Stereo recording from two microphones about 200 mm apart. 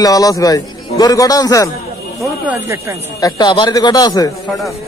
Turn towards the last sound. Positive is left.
turn(degrees=20)  # may be behind; listen again after turning